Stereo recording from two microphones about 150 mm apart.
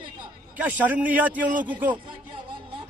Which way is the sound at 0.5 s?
10° right (ahead or behind).